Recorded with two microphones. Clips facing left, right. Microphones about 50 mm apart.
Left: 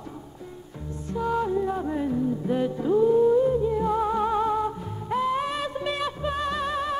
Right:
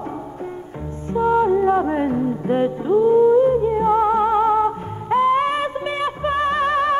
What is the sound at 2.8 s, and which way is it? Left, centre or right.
Music, right.